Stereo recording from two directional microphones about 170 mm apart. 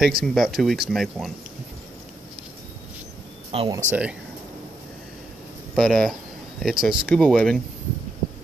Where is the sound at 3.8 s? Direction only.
50° right (ahead or behind).